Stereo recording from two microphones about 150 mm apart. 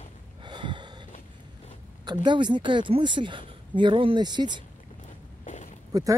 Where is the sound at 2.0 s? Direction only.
30° right (ahead or behind).